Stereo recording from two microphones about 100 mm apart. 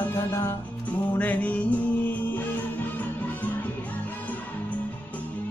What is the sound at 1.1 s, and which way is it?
Music, 15° left (ahead or behind).